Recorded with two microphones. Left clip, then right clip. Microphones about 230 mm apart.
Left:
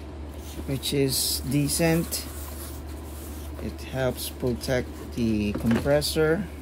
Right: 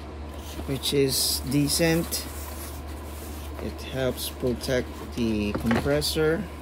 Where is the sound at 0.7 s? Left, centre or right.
Centre.